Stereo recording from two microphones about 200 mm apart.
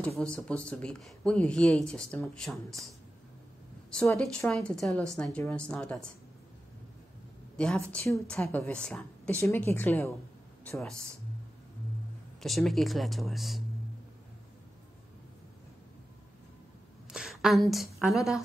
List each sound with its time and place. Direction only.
0.2 s speech: 5° left (ahead or behind)
3.9 s speech: 5° left (ahead or behind)
7.5 s a woman's voice: 5° left (ahead or behind)
12.4 s speech: centre (ahead or behind)
17.1 s a woman's voice: 5° right (ahead or behind)